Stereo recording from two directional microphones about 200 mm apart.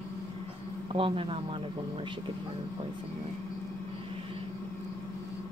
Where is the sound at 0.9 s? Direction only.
25° right (ahead or behind).